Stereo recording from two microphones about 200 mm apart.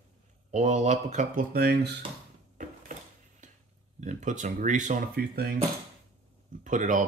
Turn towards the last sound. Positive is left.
turn(degrees=-40)  # may be behind; listen again after turning